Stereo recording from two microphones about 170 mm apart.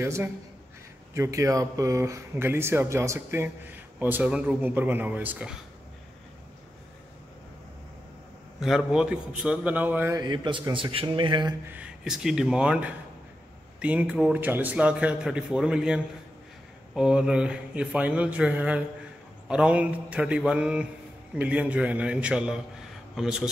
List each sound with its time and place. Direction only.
0.0 s speech: 15° right (ahead or behind)
8.5 s a man's voice: 5° right (ahead or behind); by 11.5 s 30° right (ahead or behind)
11.6 s a man's voice: 10° right (ahead or behind)